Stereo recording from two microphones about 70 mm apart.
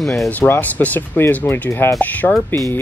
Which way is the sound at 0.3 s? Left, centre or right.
Left.